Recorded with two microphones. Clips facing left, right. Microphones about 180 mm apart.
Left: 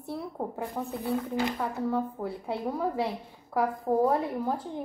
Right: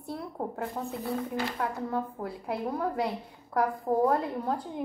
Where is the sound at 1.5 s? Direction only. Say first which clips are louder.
Left 2 dB; centre (ahead or behind).